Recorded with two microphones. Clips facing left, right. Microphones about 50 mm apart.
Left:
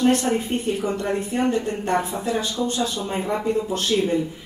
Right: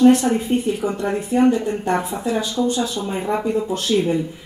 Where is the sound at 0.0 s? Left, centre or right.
Right.